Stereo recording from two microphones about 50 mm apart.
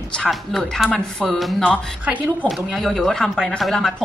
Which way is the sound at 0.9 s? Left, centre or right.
Centre.